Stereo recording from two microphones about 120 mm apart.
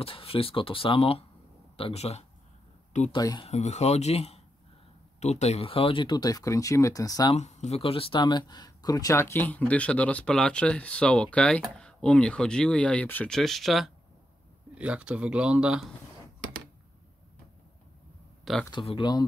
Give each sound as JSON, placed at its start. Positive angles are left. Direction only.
{"t": 0.0, "sound": "speech", "side_deg": 50}
{"t": 3.1, "sound": "speech", "side_deg": 35}
{"t": 3.4, "sound": "speech", "side_deg": 70}
{"t": 7.3, "sound": "speech", "side_deg": 70}
{"t": 13.4, "sound": "speech", "side_deg": 0}
{"t": 18.4, "sound": "a sound", "side_deg": 0}
{"t": 18.7, "sound": "speech", "side_deg": 45}